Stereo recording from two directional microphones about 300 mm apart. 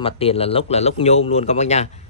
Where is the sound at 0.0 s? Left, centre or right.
Centre.